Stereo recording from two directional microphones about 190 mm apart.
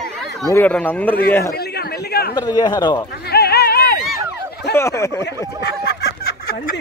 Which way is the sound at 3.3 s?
55° left (ahead or behind).